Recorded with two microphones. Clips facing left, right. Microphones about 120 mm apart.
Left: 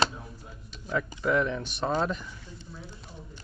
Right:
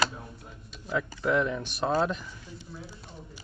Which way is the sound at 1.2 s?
Centre (ahead or behind).